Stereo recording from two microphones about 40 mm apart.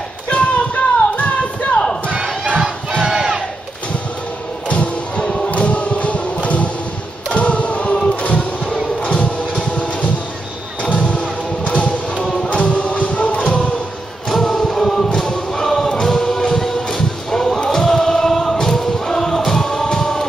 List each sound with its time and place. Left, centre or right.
0.3 s a sound: left
1.8 s crowd: centre
3.0 s crowd: centre
4.6 s music: left
5.2 s music: centre
5.5 s music: left
7.2 s choir: left
8.0 s music: left
14.3 s chant: centre
15.1 s music: centre
19.9 s a sound: centre